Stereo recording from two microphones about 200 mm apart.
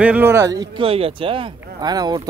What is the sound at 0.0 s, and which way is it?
A man's voice, 10° right (ahead or behind).